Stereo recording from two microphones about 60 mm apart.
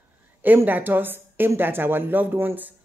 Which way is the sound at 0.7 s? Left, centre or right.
Right.